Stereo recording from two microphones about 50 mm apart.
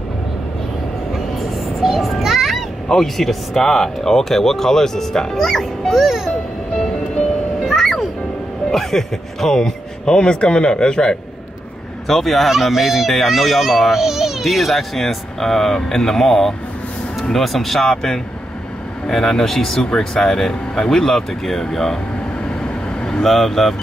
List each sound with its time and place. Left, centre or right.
1.1 s music: centre
2.9 s speech: centre
5.9 s speech: centre
7.6 s music: centre
8.7 s speech: centre
12.1 s speech: centre
22.4 s vehicle: centre
23.2 s speech: centre